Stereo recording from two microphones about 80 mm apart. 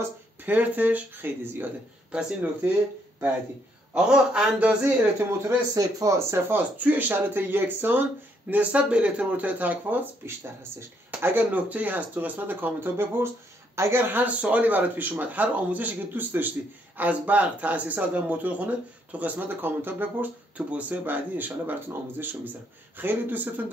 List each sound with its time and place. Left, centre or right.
0.5 s a man's voice: right
2.1 s a man's voice: centre
3.9 s a man's voice: centre
5.8 s speech: right
6.1 s a man's voice: right